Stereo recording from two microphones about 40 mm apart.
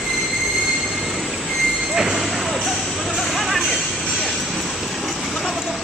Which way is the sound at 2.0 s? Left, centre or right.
Centre.